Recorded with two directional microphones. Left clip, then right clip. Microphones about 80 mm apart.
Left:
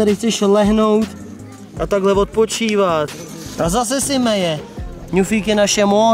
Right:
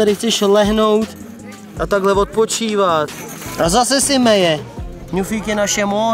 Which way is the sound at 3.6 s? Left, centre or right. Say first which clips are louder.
Right 4 dB; right.